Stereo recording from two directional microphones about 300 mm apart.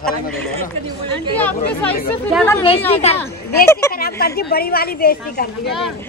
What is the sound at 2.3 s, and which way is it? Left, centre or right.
Speech, centre.